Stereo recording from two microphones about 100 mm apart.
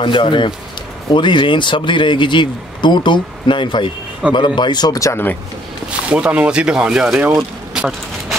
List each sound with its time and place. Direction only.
0.0 s speech: 55° left (ahead or behind); by 5.2 s 35° left (ahead or behind)
5.9 s speech: 10° right (ahead or behind)